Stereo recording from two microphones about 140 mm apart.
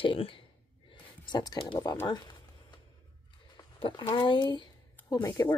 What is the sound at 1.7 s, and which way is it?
Speech, 25° left (ahead or behind).